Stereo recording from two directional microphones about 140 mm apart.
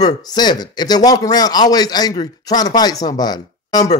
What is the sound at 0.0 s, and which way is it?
Speech, 30° left (ahead or behind).